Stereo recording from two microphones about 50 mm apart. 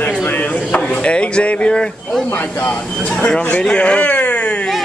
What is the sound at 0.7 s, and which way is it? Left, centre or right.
Speech, left.